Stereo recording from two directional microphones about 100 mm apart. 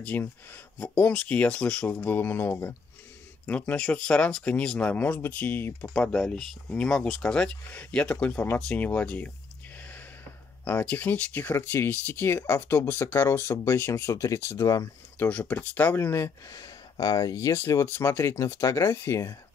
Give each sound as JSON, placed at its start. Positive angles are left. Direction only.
{"t": 0.0, "sound": "speech", "side_deg": 15}
{"t": 5.9, "sound": "speech", "side_deg": 10}
{"t": 10.6, "sound": "speech", "side_deg": 15}
{"t": 15.2, "sound": "speech", "side_deg": 15}
{"t": 16.9, "sound": "speech", "side_deg": 35}